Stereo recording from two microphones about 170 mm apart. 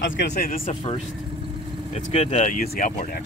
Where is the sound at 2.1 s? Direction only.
35° left (ahead or behind); by 3.2 s 50° left (ahead or behind).